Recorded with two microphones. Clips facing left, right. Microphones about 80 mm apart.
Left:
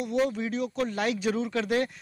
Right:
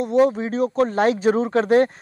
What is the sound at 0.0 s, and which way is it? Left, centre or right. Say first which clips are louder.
Speech: right 9 dB; right.